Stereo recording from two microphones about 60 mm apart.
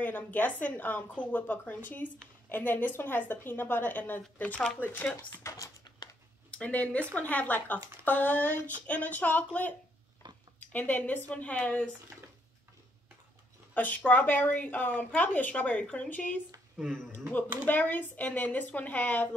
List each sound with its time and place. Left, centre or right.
0.0 s a woman's voice: left
4.7 s a woman's voice: left
5.1 s speech: left
6.5 s speech: left
13.7 s speech: left
17.6 s speech: left